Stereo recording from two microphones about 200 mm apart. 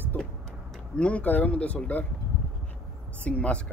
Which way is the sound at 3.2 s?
5° left (ahead or behind).